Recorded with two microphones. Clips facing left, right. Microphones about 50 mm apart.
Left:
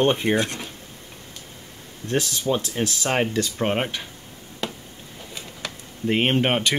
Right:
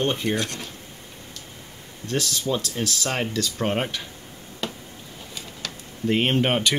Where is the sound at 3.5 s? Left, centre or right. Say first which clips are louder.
Even; centre.